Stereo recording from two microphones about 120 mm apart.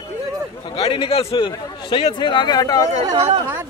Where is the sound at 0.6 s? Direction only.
50° left (ahead or behind).